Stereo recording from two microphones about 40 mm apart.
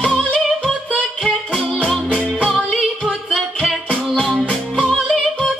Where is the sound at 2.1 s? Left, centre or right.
Centre.